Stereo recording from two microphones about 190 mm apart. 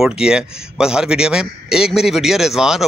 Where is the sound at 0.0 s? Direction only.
5° right (ahead or behind).